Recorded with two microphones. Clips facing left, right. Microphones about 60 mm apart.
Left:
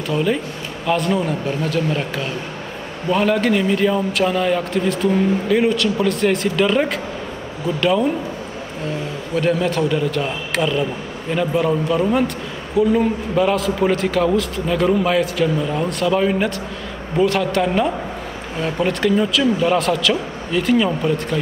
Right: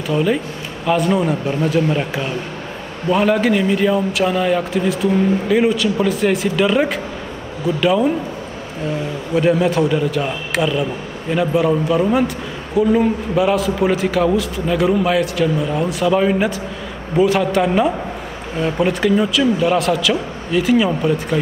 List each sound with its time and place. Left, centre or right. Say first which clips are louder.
0.1 s a man's voice: right 2 dB; centre
9.3 s a man's voice: right 3 dB; centre